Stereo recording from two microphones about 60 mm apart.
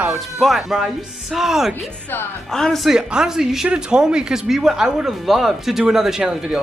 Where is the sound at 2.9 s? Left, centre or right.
Centre.